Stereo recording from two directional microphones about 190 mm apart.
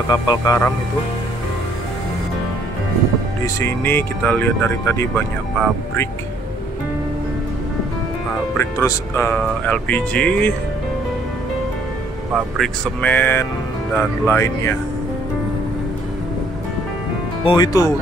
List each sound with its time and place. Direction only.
0.1 s speech: 20° left (ahead or behind)
3.5 s speech: 10° left (ahead or behind)
8.5 s speech: 15° left (ahead or behind)
12.5 s speech: 5° left (ahead or behind)
17.5 s speech: 20° left (ahead or behind)